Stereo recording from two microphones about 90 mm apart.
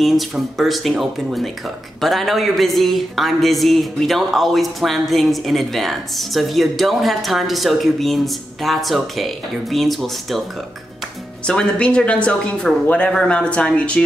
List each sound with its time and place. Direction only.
0.0 s speech: centre (ahead or behind)
11.4 s speech: 10° left (ahead or behind)